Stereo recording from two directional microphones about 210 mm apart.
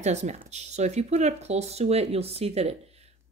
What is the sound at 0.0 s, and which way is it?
Speech, 30° right (ahead or behind).